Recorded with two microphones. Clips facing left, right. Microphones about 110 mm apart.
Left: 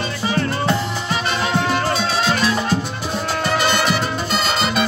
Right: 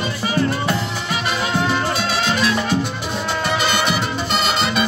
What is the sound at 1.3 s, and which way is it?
Music, 5° right (ahead or behind).